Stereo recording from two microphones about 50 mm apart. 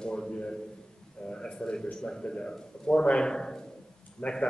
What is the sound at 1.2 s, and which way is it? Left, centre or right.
A man's voice, centre.